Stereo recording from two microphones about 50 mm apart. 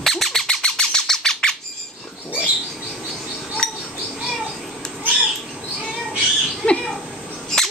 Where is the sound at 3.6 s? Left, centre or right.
Centre.